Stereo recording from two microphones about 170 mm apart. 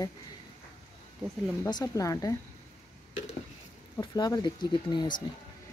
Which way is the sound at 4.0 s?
25° left (ahead or behind).